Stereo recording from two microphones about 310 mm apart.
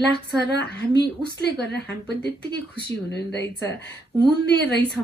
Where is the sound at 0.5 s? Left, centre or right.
Left.